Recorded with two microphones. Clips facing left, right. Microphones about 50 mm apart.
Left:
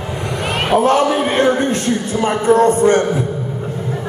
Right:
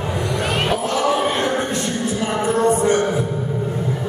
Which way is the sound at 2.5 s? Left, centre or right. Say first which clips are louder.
Left 6 dB; left.